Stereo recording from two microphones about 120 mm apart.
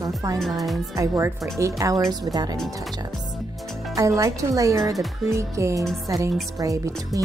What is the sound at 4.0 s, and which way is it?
Speech, 30° right (ahead or behind).